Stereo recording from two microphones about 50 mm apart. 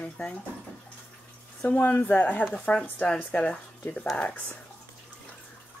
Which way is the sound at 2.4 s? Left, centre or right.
Left.